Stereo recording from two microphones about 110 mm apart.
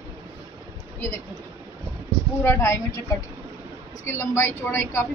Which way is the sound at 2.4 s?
25° left (ahead or behind).